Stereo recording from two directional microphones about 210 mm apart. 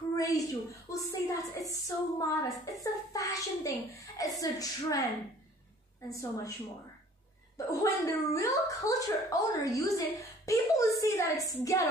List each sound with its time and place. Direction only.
0.1 s a sound: 15° left (ahead or behind)
0.8 s speech: 15° left (ahead or behind)
7.5 s speech: 15° left (ahead or behind)